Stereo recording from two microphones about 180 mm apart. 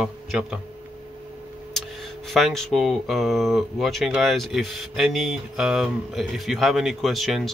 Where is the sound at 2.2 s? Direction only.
Centre (ahead or behind).